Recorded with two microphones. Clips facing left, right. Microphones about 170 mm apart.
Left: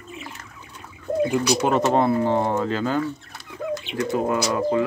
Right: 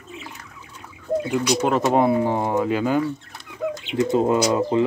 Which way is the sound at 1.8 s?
10° right (ahead or behind).